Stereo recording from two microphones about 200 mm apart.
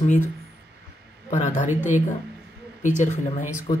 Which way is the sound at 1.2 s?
35° left (ahead or behind).